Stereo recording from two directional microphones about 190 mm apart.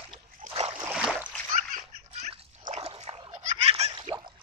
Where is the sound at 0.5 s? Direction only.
30° right (ahead or behind).